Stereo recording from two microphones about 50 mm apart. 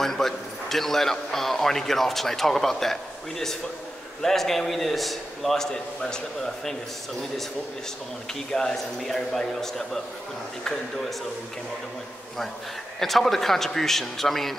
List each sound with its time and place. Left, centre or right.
0.0 s a man's voice: centre
8.5 s a man's voice: centre
13.0 s a man's voice: centre